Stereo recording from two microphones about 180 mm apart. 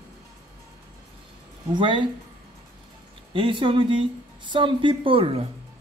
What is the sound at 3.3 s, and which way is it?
A man's voice, 30° right (ahead or behind).